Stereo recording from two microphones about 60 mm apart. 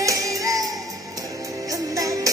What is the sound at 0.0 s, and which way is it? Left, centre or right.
Music, right.